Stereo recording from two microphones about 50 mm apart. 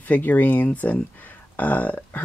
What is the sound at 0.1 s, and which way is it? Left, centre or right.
Speech, left.